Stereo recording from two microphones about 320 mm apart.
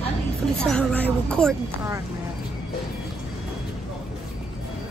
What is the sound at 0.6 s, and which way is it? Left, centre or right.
Speech, centre.